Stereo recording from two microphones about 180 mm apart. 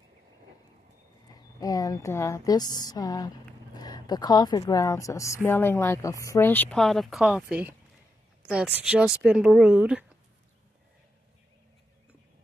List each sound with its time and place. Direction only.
1.3 s a woman's voice: 20° left (ahead or behind); by 10.0 s 10° right (ahead or behind)